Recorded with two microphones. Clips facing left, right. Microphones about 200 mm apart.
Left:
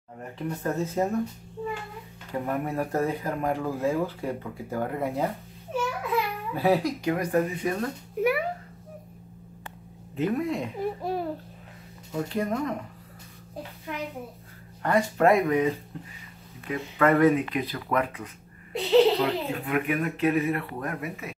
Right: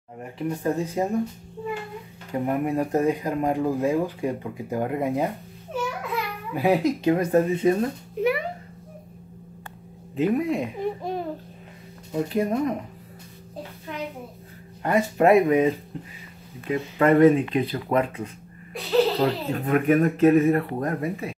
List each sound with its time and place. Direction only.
0.4 s speech: 10° right (ahead or behind)
2.3 s speech: 20° right (ahead or behind)
6.5 s speech: 15° right (ahead or behind)
8.2 s a sound: 10° left (ahead or behind)
10.1 s speech: 15° right (ahead or behind)
10.8 s a child's voice: 5° left (ahead or behind)
12.1 s speech: 15° right (ahead or behind)
14.8 s speech: 20° right (ahead or behind)
18.7 s speech: 20° left (ahead or behind)
19.1 s speech: 40° right (ahead or behind)